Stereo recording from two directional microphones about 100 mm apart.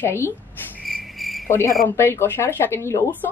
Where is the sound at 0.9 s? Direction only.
Centre (ahead or behind).